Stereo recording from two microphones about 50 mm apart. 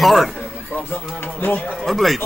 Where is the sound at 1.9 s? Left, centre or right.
Centre.